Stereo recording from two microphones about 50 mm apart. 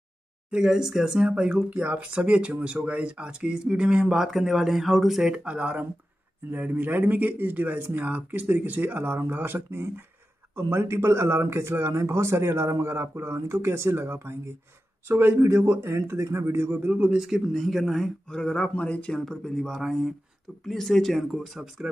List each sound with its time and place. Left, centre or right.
0.5 s speech: centre
4.2 s speech: centre
5.2 s speech: right
6.7 s speech: right
10.5 s speech: right
15.4 s speech: right
16.9 s speech: right
17.3 s speech: centre
18.3 s speech: centre
19.1 s speech: centre